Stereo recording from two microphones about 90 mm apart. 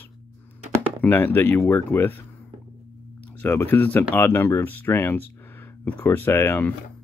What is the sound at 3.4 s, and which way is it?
Speech, 20° left (ahead or behind).